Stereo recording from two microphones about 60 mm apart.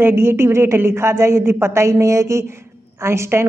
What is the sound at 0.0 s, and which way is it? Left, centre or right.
A woman's voice, right.